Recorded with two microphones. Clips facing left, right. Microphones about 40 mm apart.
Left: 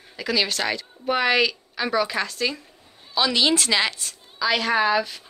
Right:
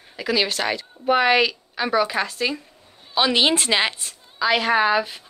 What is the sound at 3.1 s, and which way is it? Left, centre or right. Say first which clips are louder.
A woman's voice: right 2 dB; right.